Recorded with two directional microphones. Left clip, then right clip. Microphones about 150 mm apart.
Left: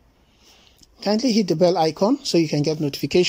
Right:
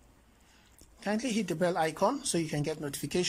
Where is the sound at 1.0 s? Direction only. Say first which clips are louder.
Left 12 dB; 25° left (ahead or behind).